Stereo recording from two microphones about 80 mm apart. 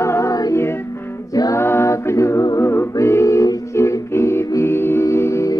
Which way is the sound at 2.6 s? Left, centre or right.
Left.